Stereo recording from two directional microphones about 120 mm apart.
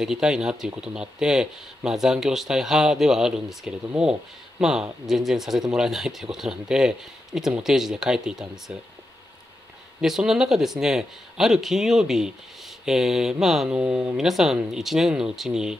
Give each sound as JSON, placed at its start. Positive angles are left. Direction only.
{"t": 0.0, "sound": "speech", "side_deg": -5}
{"t": 10.0, "sound": "speech", "side_deg": -5}